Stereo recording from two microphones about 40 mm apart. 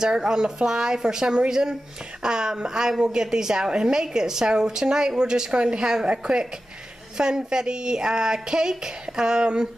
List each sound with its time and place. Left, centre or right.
0.0 s a woman's voice: centre